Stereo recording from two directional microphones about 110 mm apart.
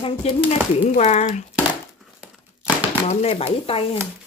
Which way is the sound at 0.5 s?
75° left (ahead or behind).